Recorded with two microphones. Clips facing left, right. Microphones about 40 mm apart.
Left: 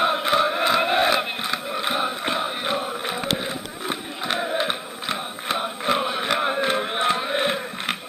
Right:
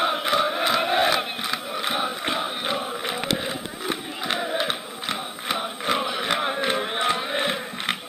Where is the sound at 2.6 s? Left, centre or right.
Left.